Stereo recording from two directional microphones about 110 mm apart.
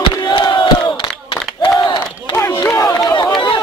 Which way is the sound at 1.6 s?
40° left (ahead or behind).